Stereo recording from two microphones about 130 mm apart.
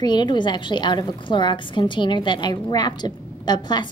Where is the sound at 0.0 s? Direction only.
35° left (ahead or behind).